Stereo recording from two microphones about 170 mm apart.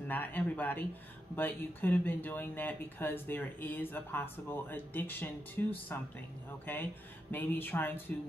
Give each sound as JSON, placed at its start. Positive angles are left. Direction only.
{"t": 0.1, "sound": "speech", "side_deg": 10}